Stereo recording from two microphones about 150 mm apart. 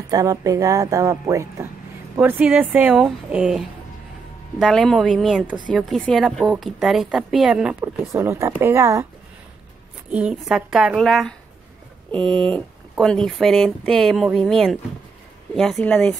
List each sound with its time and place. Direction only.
0.1 s a woman's voice: 25° right (ahead or behind); by 7.7 s 5° right (ahead or behind)
8.1 s a woman's voice: 20° right (ahead or behind)
10.3 s a woman's voice: 5° right (ahead or behind)